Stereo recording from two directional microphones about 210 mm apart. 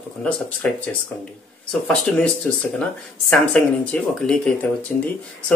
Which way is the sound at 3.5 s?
5° left (ahead or behind).